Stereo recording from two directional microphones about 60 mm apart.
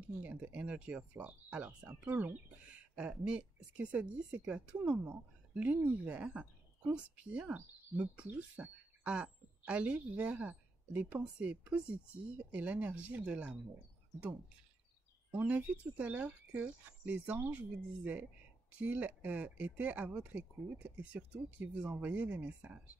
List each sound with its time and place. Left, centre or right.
0.2 s a woman's voice: right
2.0 s a woman's voice: right
15.4 s a woman's voice: right